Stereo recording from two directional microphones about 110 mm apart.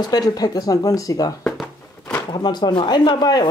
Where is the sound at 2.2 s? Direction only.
40° left (ahead or behind).